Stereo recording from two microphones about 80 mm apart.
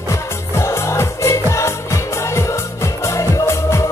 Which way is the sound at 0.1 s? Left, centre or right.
Left.